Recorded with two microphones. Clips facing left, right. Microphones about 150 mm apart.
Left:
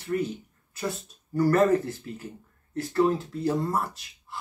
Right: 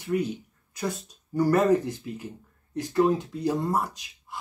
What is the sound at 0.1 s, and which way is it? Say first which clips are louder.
Speech: right 1 dB; 15° right (ahead or behind).